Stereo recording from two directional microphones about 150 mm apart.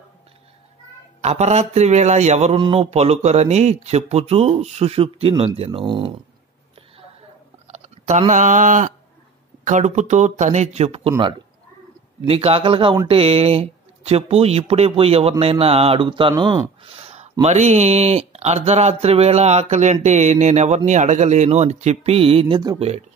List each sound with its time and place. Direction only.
1.2 s speech: 45° right (ahead or behind)
2.5 s speech: 35° right (ahead or behind)
7.6 s a sound: 45° right (ahead or behind)
9.7 s speech: 55° right (ahead or behind)
12.3 s speech: 40° right (ahead or behind)
17.0 s speech: 45° right (ahead or behind)